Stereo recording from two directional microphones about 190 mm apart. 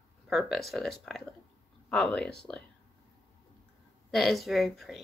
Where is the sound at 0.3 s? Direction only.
Centre (ahead or behind).